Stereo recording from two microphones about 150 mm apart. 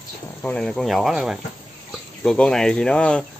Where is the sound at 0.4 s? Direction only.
5° left (ahead or behind).